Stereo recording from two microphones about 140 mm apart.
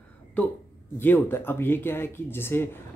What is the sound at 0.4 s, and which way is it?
Speech, 10° left (ahead or behind).